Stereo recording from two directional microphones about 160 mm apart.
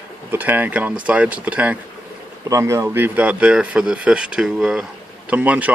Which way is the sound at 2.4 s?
20° right (ahead or behind).